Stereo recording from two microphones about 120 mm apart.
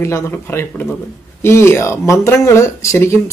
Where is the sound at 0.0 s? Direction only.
20° left (ahead or behind).